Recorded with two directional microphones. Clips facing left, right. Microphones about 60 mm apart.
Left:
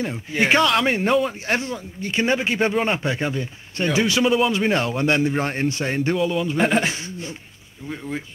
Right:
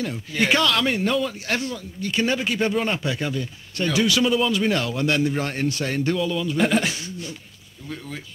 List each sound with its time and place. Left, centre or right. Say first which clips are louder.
0.0 s speech: left 2 dB; left